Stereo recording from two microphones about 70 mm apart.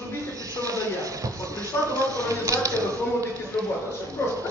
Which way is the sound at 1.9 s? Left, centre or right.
Right.